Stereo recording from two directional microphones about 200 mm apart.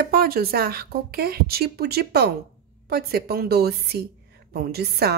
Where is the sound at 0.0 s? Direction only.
50° right (ahead or behind).